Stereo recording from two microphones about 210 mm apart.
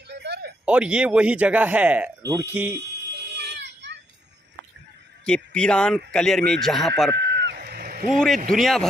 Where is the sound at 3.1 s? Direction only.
55° right (ahead or behind).